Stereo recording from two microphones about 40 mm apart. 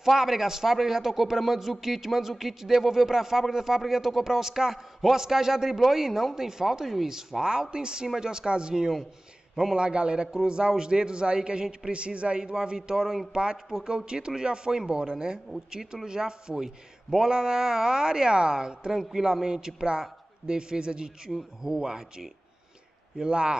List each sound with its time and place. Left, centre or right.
0.0 s a man's voice: centre; by 23.6 s right